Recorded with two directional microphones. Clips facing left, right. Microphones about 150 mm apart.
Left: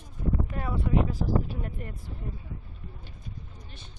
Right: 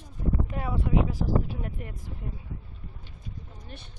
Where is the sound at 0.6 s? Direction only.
10° right (ahead or behind).